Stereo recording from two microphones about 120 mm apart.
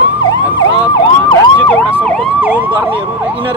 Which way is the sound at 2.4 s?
15° right (ahead or behind).